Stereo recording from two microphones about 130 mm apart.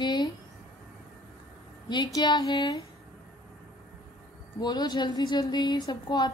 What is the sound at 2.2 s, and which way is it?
Speech, 30° left (ahead or behind).